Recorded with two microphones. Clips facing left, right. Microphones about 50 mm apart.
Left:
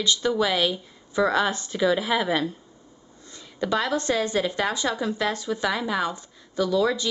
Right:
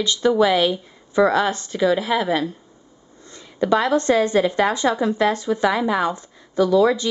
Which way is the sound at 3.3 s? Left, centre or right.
Right.